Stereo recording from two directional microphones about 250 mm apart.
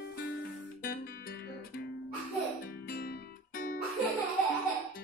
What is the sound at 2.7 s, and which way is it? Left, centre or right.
Music, left.